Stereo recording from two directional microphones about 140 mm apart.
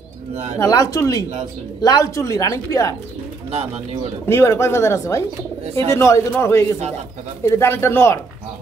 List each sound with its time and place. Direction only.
0.6 s speech: 25° left (ahead or behind)
3.5 s speech: 45° right (ahead or behind)
4.3 s speech: 20° left (ahead or behind)